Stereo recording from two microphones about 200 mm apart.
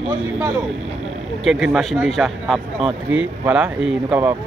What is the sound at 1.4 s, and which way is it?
Speech, 5° right (ahead or behind).